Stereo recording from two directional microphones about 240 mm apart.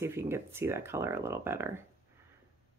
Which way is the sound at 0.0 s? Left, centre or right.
Centre.